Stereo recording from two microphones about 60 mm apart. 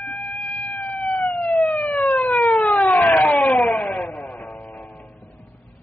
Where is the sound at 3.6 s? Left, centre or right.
Centre.